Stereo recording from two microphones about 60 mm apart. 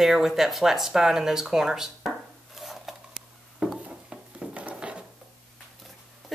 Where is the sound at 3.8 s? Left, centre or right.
Right.